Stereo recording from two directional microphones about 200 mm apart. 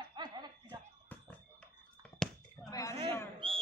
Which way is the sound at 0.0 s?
20° right (ahead or behind).